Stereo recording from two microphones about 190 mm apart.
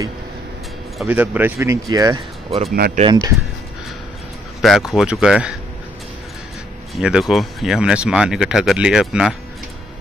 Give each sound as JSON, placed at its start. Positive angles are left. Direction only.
{"t": 1.0, "sound": "speech", "side_deg": -10}
{"t": 4.6, "sound": "speech", "side_deg": 0}
{"t": 7.0, "sound": "speech", "side_deg": -5}